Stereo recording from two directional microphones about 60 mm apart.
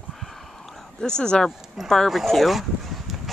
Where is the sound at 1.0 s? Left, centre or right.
Centre.